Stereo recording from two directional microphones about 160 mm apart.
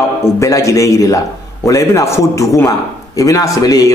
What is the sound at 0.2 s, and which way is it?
A man's voice, 20° left (ahead or behind).